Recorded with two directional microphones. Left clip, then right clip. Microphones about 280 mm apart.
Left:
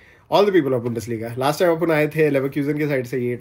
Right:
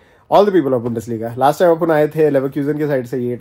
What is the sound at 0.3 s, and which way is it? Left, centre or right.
Speech, centre.